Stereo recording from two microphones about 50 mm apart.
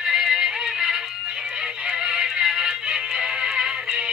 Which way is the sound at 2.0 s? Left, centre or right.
Centre.